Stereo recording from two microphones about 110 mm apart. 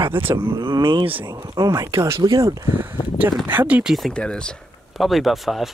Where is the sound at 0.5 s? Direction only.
45° right (ahead or behind); by 3.9 s 15° right (ahead or behind).